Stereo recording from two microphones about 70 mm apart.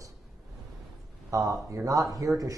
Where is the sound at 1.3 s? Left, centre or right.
Right.